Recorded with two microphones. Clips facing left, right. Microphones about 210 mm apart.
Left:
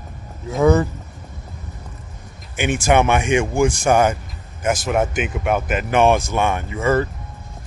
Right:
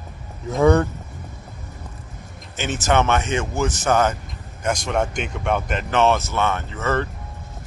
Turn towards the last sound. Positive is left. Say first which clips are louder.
# left 5 dB
turn(degrees=10)  # may be behind; listen again after turning